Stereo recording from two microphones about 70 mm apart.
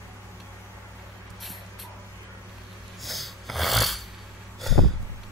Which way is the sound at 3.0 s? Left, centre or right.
Centre.